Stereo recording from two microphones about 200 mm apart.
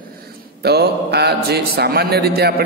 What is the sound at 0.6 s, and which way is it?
Speech, 55° right (ahead or behind).